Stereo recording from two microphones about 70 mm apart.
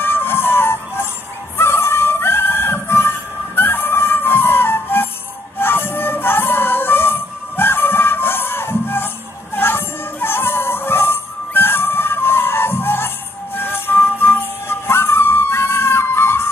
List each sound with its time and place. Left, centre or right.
0.0 s music: left